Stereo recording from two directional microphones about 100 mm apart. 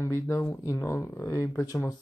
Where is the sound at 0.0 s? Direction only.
30° left (ahead or behind).